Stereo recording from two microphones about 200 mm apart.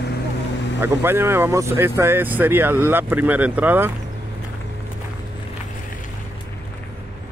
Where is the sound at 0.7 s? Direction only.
10° right (ahead or behind).